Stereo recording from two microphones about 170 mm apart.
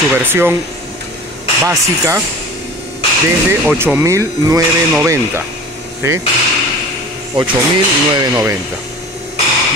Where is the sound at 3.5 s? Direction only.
15° right (ahead or behind).